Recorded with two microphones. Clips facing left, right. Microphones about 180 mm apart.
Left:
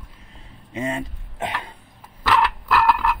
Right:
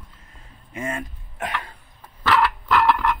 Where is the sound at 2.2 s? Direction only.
15° left (ahead or behind).